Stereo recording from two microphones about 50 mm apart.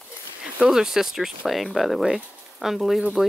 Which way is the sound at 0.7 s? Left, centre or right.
Centre.